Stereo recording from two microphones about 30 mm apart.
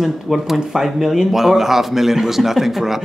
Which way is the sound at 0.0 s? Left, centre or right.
Centre.